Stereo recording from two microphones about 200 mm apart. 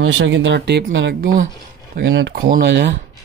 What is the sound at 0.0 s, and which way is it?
Speech, 65° right (ahead or behind).